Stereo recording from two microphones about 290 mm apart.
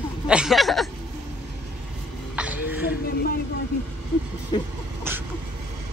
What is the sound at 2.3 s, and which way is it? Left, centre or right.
Music, centre.